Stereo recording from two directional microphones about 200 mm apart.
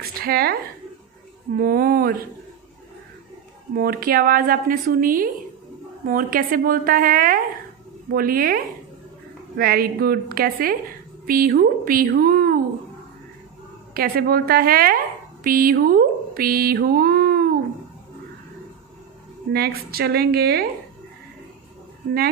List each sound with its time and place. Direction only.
0.0 s a sound: 50° right (ahead or behind)
1.6 s a woman's voice: 50° right (ahead or behind)
3.7 s a woman's voice: 45° right (ahead or behind)
9.6 s a woman's voice: 50° right (ahead or behind)
13.9 s a woman's voice: 50° right (ahead or behind)
19.5 s a woman's voice: 50° right (ahead or behind)